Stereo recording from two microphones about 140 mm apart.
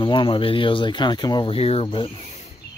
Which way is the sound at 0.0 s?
35° left (ahead or behind).